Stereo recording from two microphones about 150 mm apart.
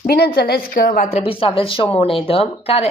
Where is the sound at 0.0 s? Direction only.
90° left; by 1.0 s 70° left (ahead or behind).